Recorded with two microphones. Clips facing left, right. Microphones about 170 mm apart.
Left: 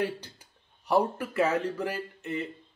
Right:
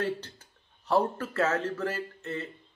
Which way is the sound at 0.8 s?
15° left (ahead or behind).